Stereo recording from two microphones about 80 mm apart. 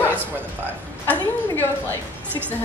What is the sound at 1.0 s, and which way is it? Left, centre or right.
Speech, left.